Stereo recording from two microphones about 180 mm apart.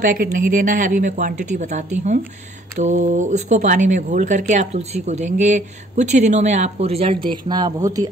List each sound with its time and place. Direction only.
0.0 s speech: 50° right (ahead or behind); by 8.1 s 20° right (ahead or behind)